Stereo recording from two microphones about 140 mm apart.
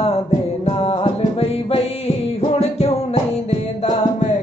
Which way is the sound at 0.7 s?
45° left (ahead or behind).